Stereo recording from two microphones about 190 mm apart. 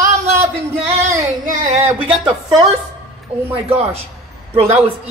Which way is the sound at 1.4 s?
45° right (ahead or behind).